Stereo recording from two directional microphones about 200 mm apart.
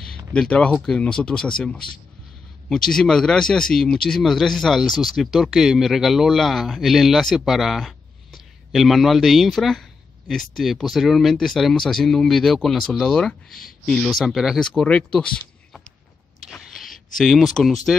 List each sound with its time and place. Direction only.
0.3 s speech: 5° left (ahead or behind)
16.4 s a sound: centre (ahead or behind)
17.2 s speech: centre (ahead or behind)